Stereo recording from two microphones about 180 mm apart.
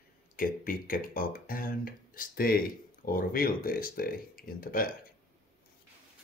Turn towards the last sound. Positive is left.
turn(degrees=55)  # may be behind; listen again after turning